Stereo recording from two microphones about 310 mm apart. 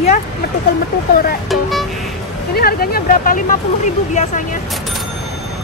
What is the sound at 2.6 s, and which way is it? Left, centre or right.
Speech, left.